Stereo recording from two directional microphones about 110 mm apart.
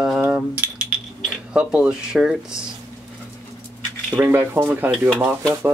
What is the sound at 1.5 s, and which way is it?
Speech, 10° right (ahead or behind).